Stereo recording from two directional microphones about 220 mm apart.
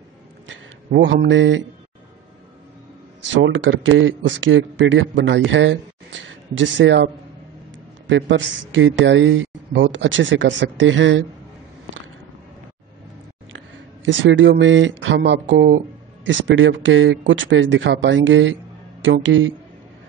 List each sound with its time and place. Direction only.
0.5 s speech: 55° right (ahead or behind)
3.4 s a woman's voice: 60° right (ahead or behind)
8.1 s a woman's voice: 60° right (ahead or behind)
14.0 s a woman's voice: 60° right (ahead or behind)